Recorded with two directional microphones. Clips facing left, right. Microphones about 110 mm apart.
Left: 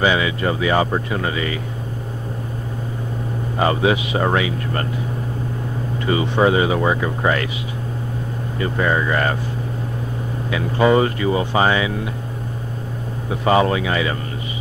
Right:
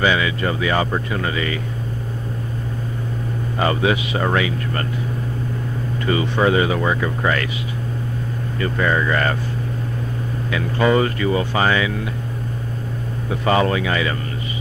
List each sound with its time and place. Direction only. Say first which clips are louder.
0.0 s speech: left 1 dB; 20° left (ahead or behind)
3.5 s speech: left 2 dB; 20° left (ahead or behind)
6.0 s speech: left 1 dB; 20° left (ahead or behind)
8.5 s speech: even; 20° left (ahead or behind)
10.5 s speech: left 2 dB; 20° left (ahead or behind)
13.3 s speech: left 2 dB; 20° left (ahead or behind)